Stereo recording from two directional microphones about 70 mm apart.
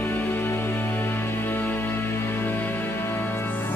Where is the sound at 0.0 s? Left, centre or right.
Left.